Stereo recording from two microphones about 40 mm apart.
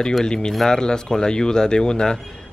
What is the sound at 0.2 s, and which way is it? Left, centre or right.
Speech, centre.